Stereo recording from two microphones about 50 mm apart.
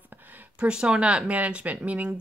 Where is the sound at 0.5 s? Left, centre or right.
Centre.